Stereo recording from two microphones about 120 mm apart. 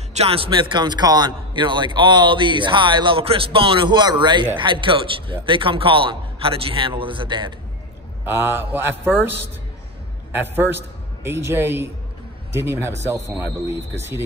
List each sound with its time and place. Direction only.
0.1 s a man's voice: 55° right (ahead or behind)
8.3 s a man's voice: 20° right (ahead or behind)
10.4 s speech: 20° right (ahead or behind)